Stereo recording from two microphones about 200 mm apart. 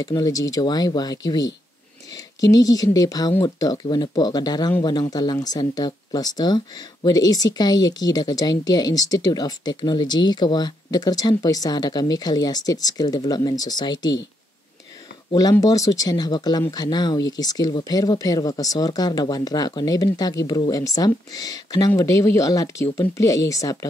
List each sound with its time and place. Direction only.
0.0 s speech: 15° left (ahead or behind)
15.3 s speech: 20° left (ahead or behind)